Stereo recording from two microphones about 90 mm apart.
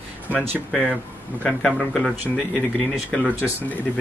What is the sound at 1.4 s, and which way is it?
Speech, 5° left (ahead or behind).